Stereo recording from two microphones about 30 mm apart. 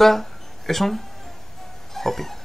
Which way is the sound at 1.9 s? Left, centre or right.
Centre.